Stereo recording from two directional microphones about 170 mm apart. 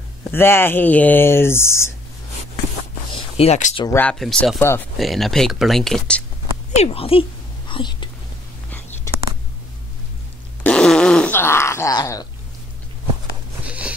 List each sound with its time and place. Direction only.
0.3 s speech: 15° left (ahead or behind)
3.1 s a sound: 35° left (ahead or behind)
3.9 s speech: 5° left (ahead or behind)
4.6 s speech: 15° left (ahead or behind)
4.9 s speech: centre (ahead or behind)
6.8 s speech: 35° left (ahead or behind)
8.6 s whispering: 10° left (ahead or behind)
10.6 s a sound: 5° left (ahead or behind); by 12.3 s 20° left (ahead or behind)
13.7 s a sound: 5° right (ahead or behind)